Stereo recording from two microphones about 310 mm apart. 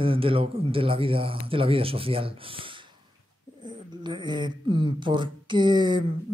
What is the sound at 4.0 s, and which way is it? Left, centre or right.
Speech, centre.